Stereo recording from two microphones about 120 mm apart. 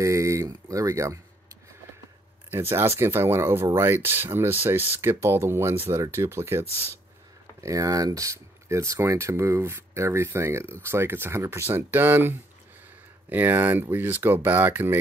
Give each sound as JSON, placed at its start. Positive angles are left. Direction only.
{"t": 0.0, "sound": "speech", "side_deg": -25}
{"t": 2.5, "sound": "speech", "side_deg": -20}
{"t": 7.6, "sound": "speech", "side_deg": -30}